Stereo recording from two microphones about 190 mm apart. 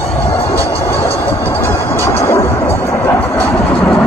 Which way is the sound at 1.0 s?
30° left (ahead or behind).